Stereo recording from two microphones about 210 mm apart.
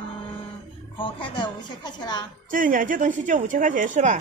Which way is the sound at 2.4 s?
40° right (ahead or behind).